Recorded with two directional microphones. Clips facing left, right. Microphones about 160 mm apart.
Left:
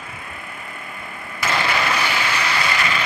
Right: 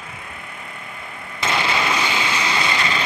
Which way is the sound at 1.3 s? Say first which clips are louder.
Even; 25° right (ahead or behind).